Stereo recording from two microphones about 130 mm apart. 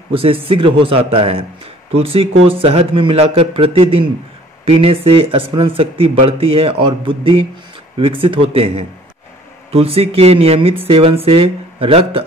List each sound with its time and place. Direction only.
0.1 s speech: 45° right (ahead or behind)